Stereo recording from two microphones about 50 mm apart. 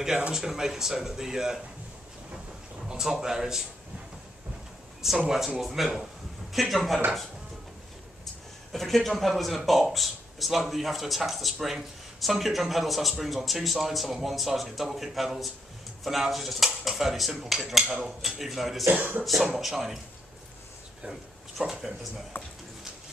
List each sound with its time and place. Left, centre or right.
0.3 s speech: centre
2.9 s speech: centre
5.0 s speech: centre
8.7 s speech: centre
18.9 s speech: right
19.4 s speech: centre
21.1 s a sound: centre
22.3 s speech: left